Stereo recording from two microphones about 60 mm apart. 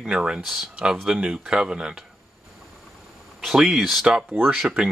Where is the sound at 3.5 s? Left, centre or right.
Centre.